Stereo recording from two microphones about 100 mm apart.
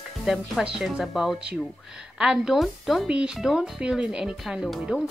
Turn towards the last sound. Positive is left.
turn(degrees=-5)  # may be behind; listen again after turning